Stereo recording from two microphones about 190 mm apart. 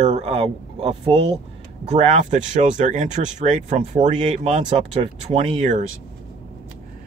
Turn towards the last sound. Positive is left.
turn(degrees=-40)  # may be behind; listen again after turning